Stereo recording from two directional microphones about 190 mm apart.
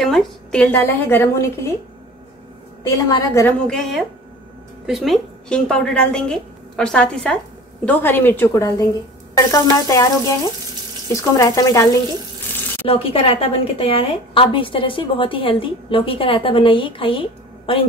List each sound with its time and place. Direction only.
0.0 s a woman's voice: 5° left (ahead or behind)
3.1 s a woman's voice: 15° left (ahead or behind)
3.7 s a woman's voice: centre (ahead or behind); by 12.0 s 15° left (ahead or behind)
12.8 s a woman's voice: 30° left (ahead or behind)